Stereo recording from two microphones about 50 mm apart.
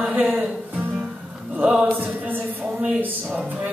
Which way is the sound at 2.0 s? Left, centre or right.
Right.